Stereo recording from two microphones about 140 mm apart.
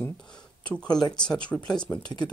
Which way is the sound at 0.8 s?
30° left (ahead or behind).